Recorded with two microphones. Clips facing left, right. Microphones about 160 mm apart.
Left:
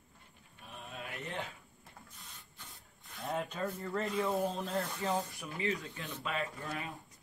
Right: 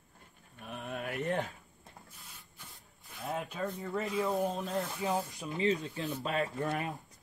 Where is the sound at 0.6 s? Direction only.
60° right (ahead or behind).